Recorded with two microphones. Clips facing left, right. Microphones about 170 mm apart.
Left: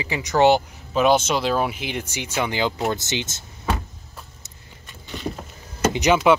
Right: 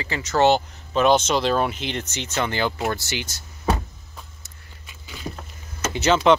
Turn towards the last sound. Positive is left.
turn(degrees=15)  # may be behind; listen again after turning